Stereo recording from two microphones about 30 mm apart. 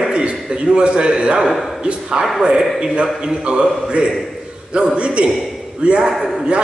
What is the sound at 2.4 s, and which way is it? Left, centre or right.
A man's voice, right.